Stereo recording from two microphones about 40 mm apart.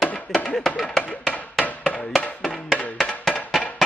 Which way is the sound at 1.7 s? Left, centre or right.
Left.